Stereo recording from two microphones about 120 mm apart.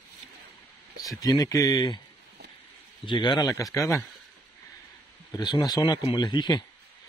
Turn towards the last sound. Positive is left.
turn(degrees=40)  # may be behind; listen again after turning